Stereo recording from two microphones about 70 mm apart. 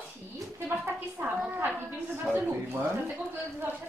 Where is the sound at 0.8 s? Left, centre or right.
Right.